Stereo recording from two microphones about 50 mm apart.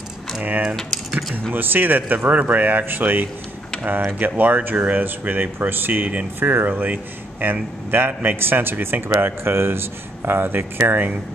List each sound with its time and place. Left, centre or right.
0.7 s speech: centre
1.5 s speech: right
9.1 s speech: right